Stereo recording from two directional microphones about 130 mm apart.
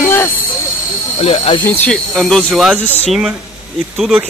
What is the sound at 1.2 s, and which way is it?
Speech, 50° left (ahead or behind).